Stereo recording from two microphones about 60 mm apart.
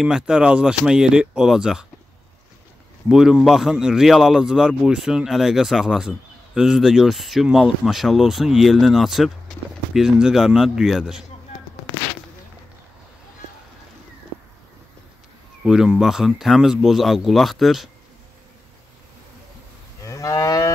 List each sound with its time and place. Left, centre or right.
0.0 s speech: centre
3.1 s speech: centre
15.6 s speech: centre
20.0 s moo: left